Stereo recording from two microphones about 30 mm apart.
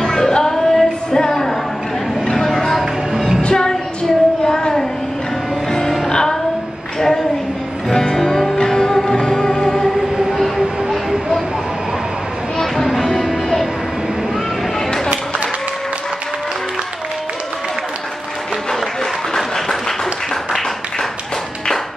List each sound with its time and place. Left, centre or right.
0.0 s music: centre
3.5 s a sound: left
5.7 s music: centre
6.0 s music: left
7.0 s a sound: centre
7.9 s music: left
10.3 s train: centre
12.8 s music: centre
19.3 s applause: centre